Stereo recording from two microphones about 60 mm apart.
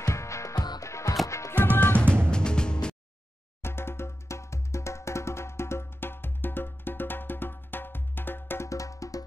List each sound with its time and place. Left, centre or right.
0.0 s music: left
0.8 s music: left
2.0 s music: right
2.3 s music: centre
3.6 s music: left
8.6 s music: left